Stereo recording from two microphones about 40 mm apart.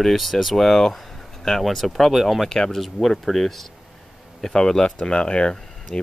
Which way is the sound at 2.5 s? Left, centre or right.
Centre.